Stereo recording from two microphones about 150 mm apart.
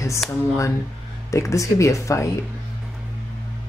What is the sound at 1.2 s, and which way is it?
Speech, 20° left (ahead or behind).